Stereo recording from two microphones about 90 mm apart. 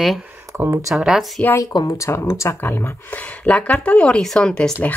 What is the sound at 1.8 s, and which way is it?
Speech, 35° left (ahead or behind).